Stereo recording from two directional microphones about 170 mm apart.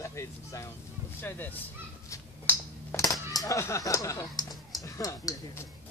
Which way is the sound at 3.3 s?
20° left (ahead or behind).